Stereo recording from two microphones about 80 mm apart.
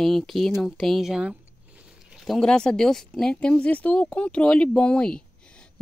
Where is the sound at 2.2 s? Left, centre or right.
Centre.